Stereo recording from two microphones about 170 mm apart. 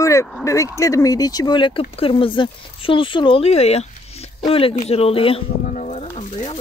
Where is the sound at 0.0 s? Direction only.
15° left (ahead or behind).